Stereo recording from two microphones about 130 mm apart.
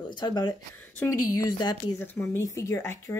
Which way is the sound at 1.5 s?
35° left (ahead or behind).